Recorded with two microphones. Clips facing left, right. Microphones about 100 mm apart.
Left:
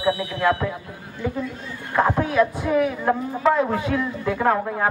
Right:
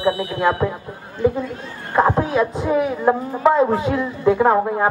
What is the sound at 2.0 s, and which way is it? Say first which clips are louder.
Speech: right 2 dB; 25° right (ahead or behind).